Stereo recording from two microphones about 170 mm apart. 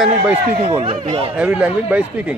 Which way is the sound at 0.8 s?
35° right (ahead or behind).